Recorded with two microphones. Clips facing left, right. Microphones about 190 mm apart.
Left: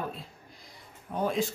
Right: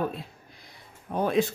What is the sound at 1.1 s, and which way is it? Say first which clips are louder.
Speech: right 4 dB; 65° right (ahead or behind).